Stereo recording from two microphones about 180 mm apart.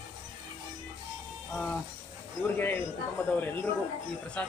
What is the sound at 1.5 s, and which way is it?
Music, 5° left (ahead or behind).